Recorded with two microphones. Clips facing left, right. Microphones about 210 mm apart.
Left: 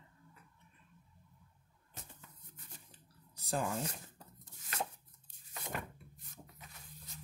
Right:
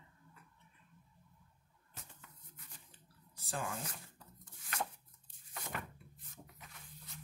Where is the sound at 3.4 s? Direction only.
40° left (ahead or behind).